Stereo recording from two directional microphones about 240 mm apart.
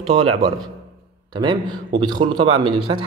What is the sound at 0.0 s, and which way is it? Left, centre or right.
Speech, right.